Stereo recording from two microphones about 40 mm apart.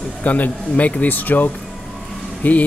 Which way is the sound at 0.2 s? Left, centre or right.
Left.